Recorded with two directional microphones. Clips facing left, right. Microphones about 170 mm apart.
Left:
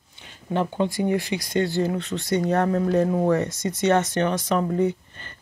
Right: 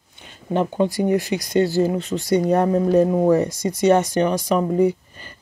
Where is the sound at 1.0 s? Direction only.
45° right (ahead or behind).